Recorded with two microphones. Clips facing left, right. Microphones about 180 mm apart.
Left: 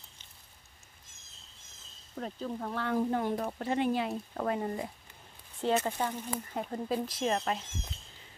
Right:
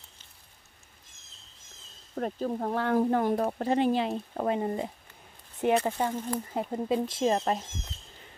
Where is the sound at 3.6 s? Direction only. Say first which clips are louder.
Right 3 dB; 30° right (ahead or behind).